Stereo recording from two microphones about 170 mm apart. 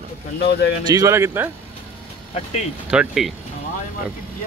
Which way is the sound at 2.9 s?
5° right (ahead or behind).